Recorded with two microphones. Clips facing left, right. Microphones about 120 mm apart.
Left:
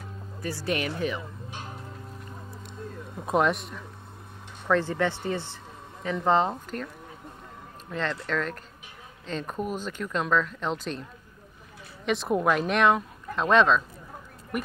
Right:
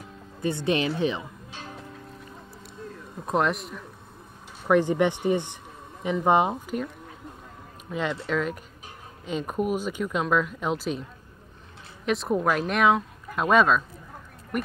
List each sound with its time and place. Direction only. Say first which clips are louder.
0.4 s speech: right 5 dB; 20° right (ahead or behind)
3.3 s speech: left 1 dB; centre (ahead or behind)
4.6 s speech: right 4 dB; 15° right (ahead or behind)
7.9 s speech: right 2 dB; 5° right (ahead or behind)
12.1 s speech: even; centre (ahead or behind)